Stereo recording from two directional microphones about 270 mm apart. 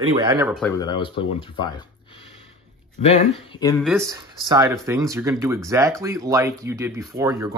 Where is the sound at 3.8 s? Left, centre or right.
Centre.